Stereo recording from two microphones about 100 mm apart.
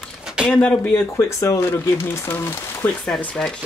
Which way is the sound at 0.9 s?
30° left (ahead or behind).